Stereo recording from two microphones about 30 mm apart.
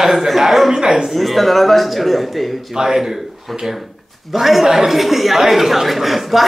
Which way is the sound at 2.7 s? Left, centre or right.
Centre.